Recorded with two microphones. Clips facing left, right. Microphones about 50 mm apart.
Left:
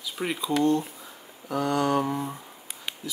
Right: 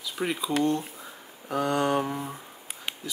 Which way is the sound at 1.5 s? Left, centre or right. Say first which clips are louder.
Left 1 dB; right.